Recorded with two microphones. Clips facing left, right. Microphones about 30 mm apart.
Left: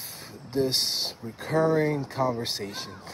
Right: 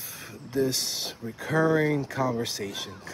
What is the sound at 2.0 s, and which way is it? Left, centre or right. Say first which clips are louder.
Speech: left 1 dB; left.